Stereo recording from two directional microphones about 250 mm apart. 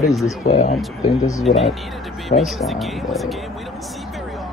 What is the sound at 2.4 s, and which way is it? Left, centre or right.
Speech, centre.